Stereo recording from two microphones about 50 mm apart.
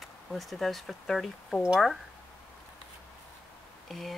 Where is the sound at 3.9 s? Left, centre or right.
Centre.